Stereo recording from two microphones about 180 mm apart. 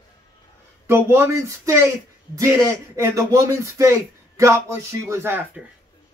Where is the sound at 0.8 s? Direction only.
15° right (ahead or behind).